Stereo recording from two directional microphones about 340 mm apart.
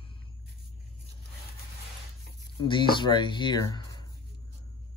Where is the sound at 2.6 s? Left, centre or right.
Centre.